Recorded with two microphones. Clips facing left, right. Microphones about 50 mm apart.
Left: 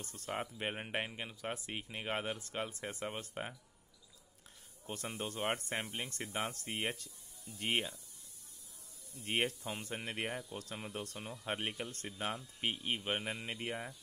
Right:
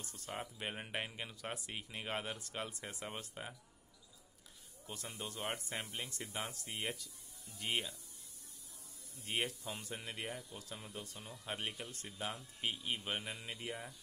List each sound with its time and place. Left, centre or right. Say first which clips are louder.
0.0 s speech: left 4 dB; left; by 1.5 s centre
1.5 s speech: left 3 dB; left
4.9 s speech: left 5 dB; left
6.5 s speech: left 3 dB; left
9.2 s speech: left 4 dB; left